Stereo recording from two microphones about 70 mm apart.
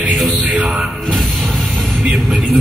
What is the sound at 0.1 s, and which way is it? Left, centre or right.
Mantra, centre.